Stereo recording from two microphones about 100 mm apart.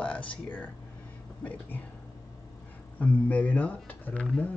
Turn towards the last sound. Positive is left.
turn(degrees=10)  # may be behind; listen again after turning